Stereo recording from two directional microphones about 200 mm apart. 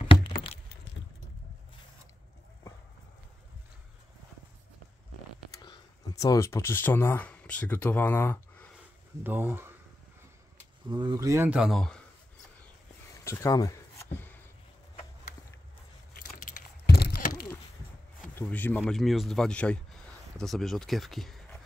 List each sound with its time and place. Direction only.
5.6 s speech: 20° left (ahead or behind)
9.2 s speech: 10° right (ahead or behind)
10.9 s speech: 20° right (ahead or behind); by 12.0 s centre (ahead or behind)
13.2 s a sound: 15° left (ahead or behind)
16.2 s biting: 50° left (ahead or behind)
18.3 s speech: 10° left (ahead or behind)